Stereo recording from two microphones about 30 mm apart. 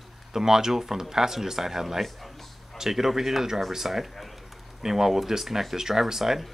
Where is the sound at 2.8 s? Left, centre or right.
Centre.